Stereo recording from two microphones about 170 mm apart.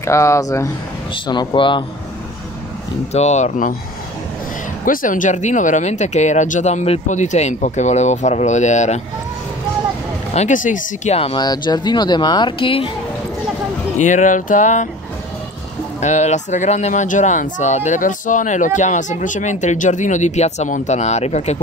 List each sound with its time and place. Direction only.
0.0 s speech: 15° left (ahead or behind)
3.1 s speech: 40° left (ahead or behind)
4.8 s speech: 50° left (ahead or behind)
10.3 s speech: 45° left (ahead or behind)
11.1 s speech: 35° left (ahead or behind)
11.4 s speech: 25° left (ahead or behind)
13.9 s speech: 45° left (ahead or behind)
16.0 s speech: 45° left (ahead or behind)